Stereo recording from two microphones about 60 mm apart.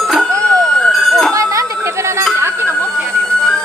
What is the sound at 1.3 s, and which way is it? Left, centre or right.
Music, right.